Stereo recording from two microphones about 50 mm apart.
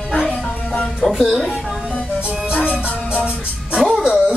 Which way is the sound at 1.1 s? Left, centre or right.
Centre.